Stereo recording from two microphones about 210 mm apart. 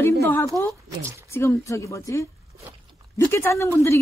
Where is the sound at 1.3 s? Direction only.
10° left (ahead or behind).